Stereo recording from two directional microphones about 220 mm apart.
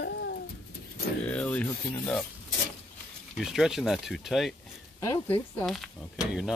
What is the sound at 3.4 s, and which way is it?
Speech, centre (ahead or behind).